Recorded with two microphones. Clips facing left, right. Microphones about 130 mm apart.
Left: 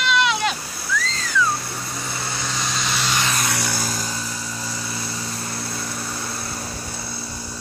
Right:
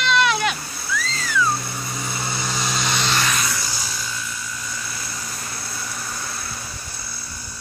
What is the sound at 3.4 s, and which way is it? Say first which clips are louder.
Music: left 4 dB; 60° left (ahead or behind).